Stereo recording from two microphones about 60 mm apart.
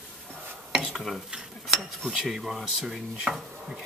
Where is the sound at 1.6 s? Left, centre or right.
Centre.